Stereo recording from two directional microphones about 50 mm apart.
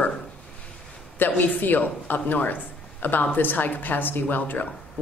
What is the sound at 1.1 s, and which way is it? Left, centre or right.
A woman's voice, left.